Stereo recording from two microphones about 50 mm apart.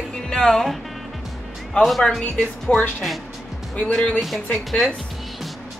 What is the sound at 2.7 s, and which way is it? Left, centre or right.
A woman's voice, left.